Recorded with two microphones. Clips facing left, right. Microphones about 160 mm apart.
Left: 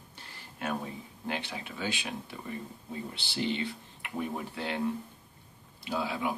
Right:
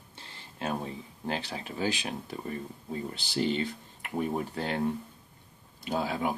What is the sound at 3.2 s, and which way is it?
Speech, 40° right (ahead or behind).